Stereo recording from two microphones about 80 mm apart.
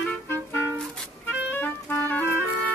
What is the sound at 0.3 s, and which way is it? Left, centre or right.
Clarinet, left.